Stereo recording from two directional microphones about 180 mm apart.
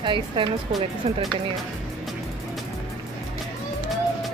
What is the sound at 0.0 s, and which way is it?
Speech, 25° right (ahead or behind).